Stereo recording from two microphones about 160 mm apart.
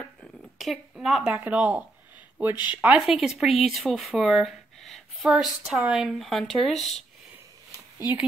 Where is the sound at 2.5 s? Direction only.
30° left (ahead or behind).